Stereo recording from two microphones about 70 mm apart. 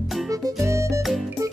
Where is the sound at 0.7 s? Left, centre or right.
Right.